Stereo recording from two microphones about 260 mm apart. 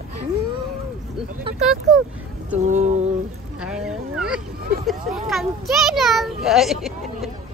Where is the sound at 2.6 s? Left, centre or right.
Right.